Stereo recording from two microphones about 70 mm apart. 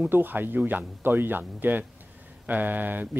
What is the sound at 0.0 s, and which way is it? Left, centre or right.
Speech, right.